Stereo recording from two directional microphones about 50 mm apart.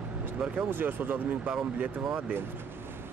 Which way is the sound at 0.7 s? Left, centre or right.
Right.